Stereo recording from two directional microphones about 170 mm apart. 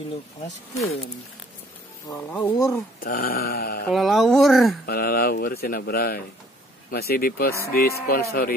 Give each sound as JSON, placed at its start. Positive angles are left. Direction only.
{"t": 2.0, "sound": "speech", "side_deg": 15}
{"t": 3.0, "sound": "speech", "side_deg": 65}
{"t": 3.9, "sound": "speech", "side_deg": 0}
{"t": 4.8, "sound": "speech", "side_deg": 60}